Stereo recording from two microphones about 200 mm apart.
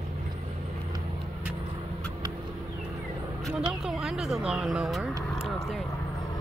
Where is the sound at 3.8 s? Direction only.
Centre (ahead or behind).